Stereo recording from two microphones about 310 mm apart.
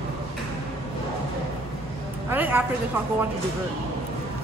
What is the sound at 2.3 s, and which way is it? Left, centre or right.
Speech, centre.